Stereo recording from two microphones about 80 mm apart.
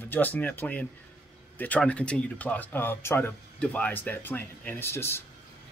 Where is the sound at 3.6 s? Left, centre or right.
Centre.